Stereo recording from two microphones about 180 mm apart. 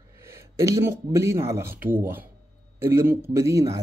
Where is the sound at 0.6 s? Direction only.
15° right (ahead or behind).